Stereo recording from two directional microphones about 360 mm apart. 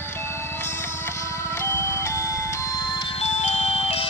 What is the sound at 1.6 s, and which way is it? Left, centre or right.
Music, centre.